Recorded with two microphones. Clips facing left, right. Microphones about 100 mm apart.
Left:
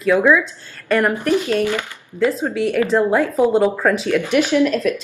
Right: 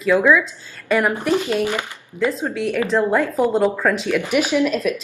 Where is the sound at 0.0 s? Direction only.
Centre (ahead or behind).